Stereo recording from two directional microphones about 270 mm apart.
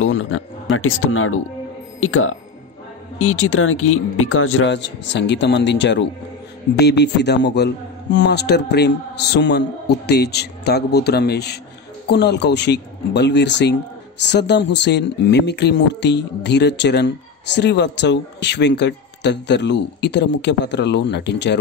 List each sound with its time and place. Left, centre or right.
0.0 s speech: left